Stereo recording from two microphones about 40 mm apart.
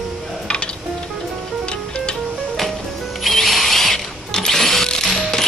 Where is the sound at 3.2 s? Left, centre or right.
Centre.